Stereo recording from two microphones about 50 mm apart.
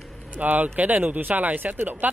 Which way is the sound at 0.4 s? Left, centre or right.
Right.